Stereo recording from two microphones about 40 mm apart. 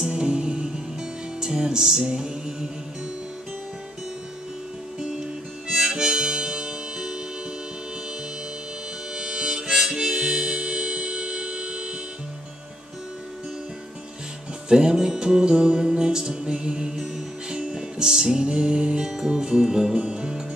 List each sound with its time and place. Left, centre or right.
0.1 s music: right
5.7 s harmonica: centre
9.1 s harmonica: centre
14.7 s music: centre
18.4 s music: right